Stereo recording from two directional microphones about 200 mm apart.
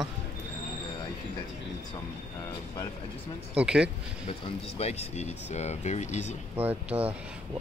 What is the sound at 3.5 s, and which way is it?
Speech, 5° right (ahead or behind).